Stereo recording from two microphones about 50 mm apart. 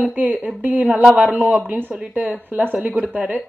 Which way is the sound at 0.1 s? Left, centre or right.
Right.